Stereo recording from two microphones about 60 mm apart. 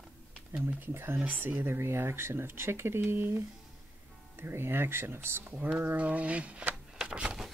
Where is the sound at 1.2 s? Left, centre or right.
Right.